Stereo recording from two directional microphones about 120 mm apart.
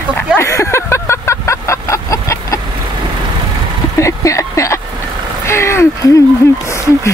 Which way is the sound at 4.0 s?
25° left (ahead or behind).